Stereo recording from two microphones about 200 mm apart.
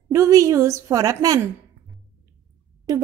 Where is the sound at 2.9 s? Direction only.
15° right (ahead or behind).